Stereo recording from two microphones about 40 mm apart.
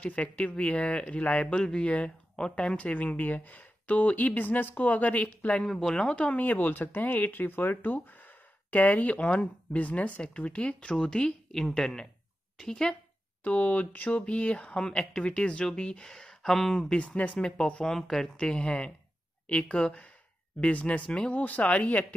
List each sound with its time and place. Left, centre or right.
0.0 s speech: left
2.9 s speech: left
5.8 s speech: centre
6.1 s speech: left
6.4 s speech: left
7.0 s speech: left; by 12.9 s centre
13.4 s speech: left; by 16.8 s centre
16.9 s speech: left
17.8 s speech: centre
18.3 s speech: left
20.6 s speech: left